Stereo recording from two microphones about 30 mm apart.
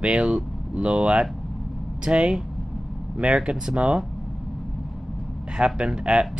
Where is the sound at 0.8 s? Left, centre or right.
Right.